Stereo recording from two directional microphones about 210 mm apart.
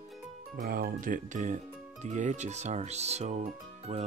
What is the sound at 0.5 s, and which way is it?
Speech, 45° right (ahead or behind).